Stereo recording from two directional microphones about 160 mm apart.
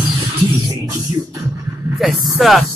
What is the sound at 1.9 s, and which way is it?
Speech, centre (ahead or behind).